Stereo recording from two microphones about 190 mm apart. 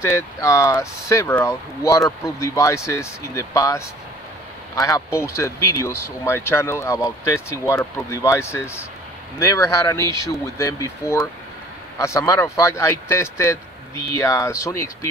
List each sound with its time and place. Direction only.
0.0 s speech: 15° left (ahead or behind)